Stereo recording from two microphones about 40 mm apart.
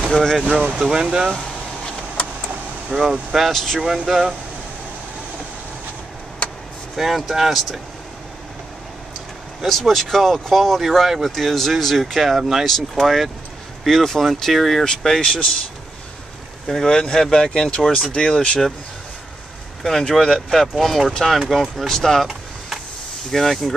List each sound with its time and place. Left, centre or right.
0.1 s speech: centre
0.4 s speech: right
2.9 s speech: centre
3.4 s speech: centre
3.8 s speech: centre
7.0 s speech: centre
9.6 s speech: centre
12.4 s speech: centre
12.6 s speech: centre
16.6 s speech: centre
19.8 s speech: centre
21.7 s speech: centre
23.3 s speech: centre